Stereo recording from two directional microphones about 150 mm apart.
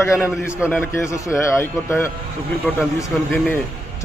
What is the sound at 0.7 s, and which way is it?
A man's voice, 15° left (ahead or behind).